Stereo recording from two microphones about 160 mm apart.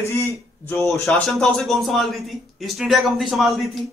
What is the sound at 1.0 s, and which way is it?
A man's voice, centre (ahead or behind).